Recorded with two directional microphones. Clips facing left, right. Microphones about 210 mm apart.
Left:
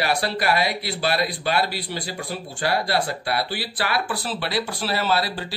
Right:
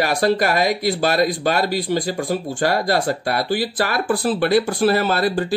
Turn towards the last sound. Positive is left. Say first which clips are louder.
# right 5 dB
turn(degrees=-50)  # may be behind; listen again after turning